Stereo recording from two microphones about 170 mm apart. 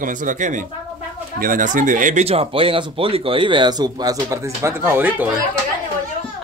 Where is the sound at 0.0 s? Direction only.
50° right (ahead or behind); by 5.4 s 10° right (ahead or behind).